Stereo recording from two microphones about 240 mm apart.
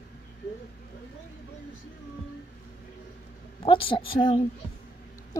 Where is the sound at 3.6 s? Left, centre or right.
Left.